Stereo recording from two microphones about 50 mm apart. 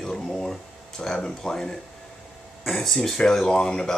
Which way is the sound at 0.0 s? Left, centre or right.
Centre.